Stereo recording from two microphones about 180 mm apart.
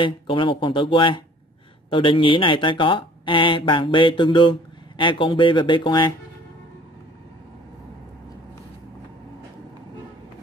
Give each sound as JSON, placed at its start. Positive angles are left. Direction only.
{"t": 0.0, "sound": "speech", "side_deg": 30}